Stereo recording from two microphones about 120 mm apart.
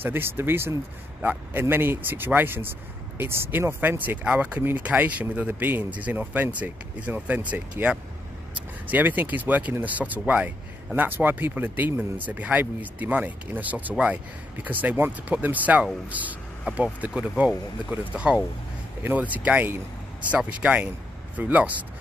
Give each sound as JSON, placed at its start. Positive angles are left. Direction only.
{"t": 0.0, "sound": "speech", "side_deg": -20}